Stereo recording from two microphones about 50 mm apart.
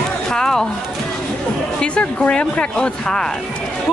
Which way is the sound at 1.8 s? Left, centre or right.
Left.